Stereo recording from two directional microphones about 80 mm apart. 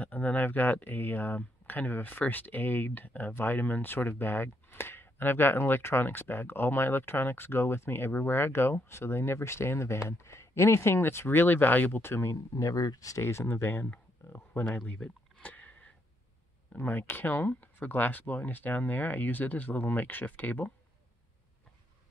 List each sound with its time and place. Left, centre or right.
0.0 s speech: left
14.9 s a sound: centre
16.7 s speech: left